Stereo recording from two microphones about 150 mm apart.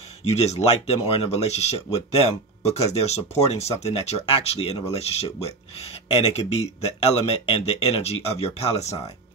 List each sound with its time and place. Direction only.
0.3 s speech: 45° left (ahead or behind)